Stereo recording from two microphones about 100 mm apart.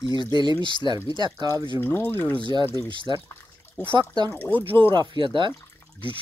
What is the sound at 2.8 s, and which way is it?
Speech, 55° right (ahead or behind).